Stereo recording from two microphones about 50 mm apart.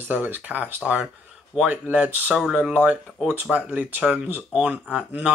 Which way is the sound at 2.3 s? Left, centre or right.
Centre.